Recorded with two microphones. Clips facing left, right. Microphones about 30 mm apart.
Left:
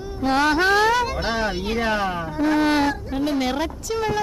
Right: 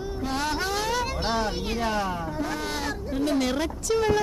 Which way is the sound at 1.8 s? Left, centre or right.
Left.